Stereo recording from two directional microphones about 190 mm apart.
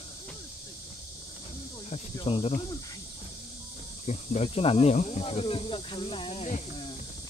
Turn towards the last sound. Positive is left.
turn(degrees=30)  # may be behind; listen again after turning